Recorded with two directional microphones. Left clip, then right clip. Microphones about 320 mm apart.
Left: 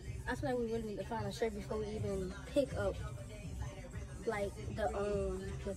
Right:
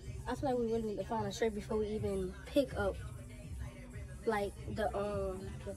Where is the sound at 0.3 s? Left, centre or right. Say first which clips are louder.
Right 3 dB; centre.